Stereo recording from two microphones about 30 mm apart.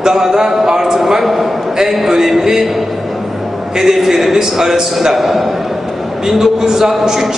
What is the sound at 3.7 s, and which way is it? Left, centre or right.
A man's voice, centre.